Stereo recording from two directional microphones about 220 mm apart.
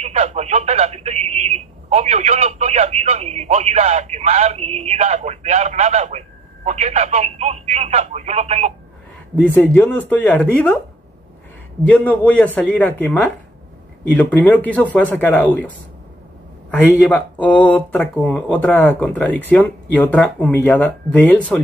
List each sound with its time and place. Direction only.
0.0 s speech: 30° right (ahead or behind)
9.5 s speech: 10° left (ahead or behind)
11.8 s speech: 5° left (ahead or behind)
17.1 s speech: 5° left (ahead or behind)